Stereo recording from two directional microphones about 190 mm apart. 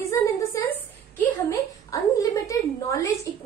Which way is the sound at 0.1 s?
15° left (ahead or behind).